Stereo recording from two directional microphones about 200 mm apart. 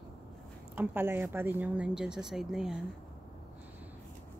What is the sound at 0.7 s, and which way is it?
A woman's voice, 10° right (ahead or behind).